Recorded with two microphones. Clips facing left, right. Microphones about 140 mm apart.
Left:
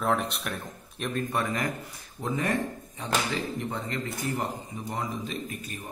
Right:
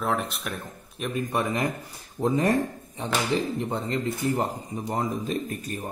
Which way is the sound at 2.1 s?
35° right (ahead or behind).